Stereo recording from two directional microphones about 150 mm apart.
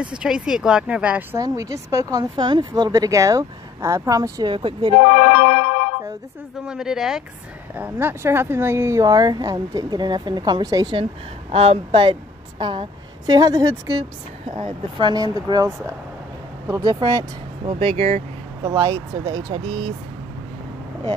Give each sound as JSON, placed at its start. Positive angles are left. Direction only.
{"t": 0.0, "sound": "speech", "side_deg": -5}
{"t": 1.4, "sound": "speech", "side_deg": -20}
{"t": 5.3, "sound": "music", "side_deg": 65}
{"t": 6.6, "sound": "speech", "side_deg": -5}
{"t": 17.7, "sound": "speech", "side_deg": -40}
{"t": 18.6, "sound": "speech", "side_deg": -25}